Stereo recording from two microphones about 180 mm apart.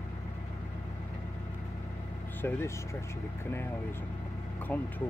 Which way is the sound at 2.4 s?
10° left (ahead or behind).